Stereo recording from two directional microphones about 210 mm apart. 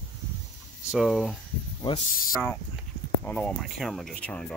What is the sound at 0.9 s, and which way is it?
Speech, centre (ahead or behind).